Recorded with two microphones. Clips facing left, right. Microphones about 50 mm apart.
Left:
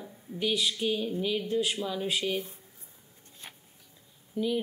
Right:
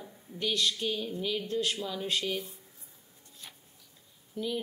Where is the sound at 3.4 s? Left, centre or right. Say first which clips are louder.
Left 3 dB; left.